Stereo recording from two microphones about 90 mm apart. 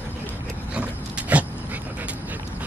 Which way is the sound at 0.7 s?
15° right (ahead or behind).